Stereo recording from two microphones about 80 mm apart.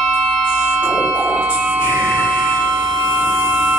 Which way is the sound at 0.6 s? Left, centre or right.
Centre.